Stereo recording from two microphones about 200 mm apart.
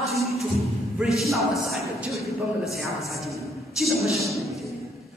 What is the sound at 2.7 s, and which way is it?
A man's voice, centre (ahead or behind).